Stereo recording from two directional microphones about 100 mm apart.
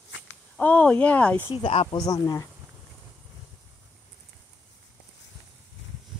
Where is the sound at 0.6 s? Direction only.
15° left (ahead or behind).